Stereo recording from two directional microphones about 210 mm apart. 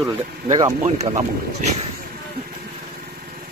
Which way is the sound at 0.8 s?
30° right (ahead or behind).